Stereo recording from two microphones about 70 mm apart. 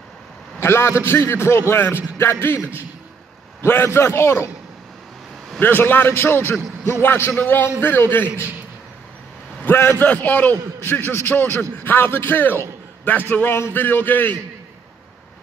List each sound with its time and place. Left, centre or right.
0.6 s a man's voice: left
5.6 s a man's voice: left
9.7 s a man's voice: left